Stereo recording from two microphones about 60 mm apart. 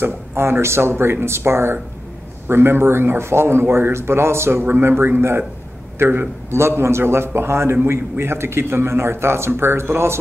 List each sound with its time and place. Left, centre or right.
0.0 s a man's voice: right